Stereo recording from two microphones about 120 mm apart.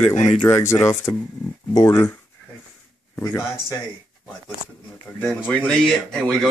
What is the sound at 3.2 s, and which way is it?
Speech, 25° left (ahead or behind).